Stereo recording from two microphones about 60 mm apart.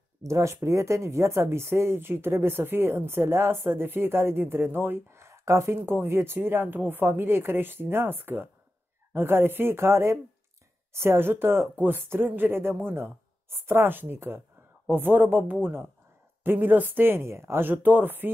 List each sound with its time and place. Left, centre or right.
0.2 s speech: right
17.6 s speech: right